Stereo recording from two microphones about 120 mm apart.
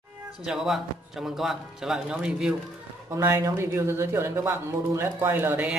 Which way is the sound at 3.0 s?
20° right (ahead or behind).